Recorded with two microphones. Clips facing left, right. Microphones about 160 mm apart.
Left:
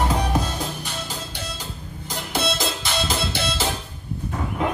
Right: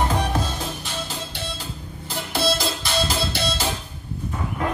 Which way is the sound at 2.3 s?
20° left (ahead or behind).